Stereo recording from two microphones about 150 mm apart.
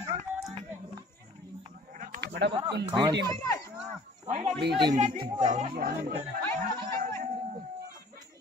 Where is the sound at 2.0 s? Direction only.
65° right (ahead or behind).